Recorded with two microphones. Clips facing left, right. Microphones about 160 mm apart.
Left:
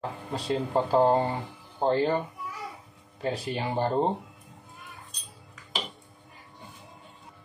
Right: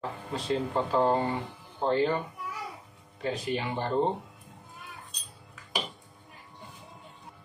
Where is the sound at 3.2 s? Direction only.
35° left (ahead or behind).